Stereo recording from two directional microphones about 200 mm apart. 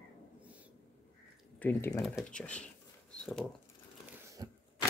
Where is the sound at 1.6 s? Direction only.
10° left (ahead or behind).